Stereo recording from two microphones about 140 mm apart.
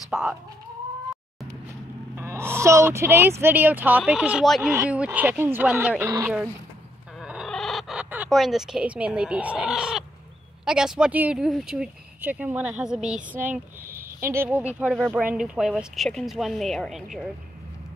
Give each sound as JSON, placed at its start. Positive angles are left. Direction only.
{"t": 0.1, "sound": "speech", "side_deg": -5}
{"t": 2.1, "sound": "speech", "side_deg": -20}
{"t": 4.6, "sound": "speech", "side_deg": -15}
{"t": 7.2, "sound": "fowl", "side_deg": -5}
{"t": 8.3, "sound": "speech", "side_deg": 0}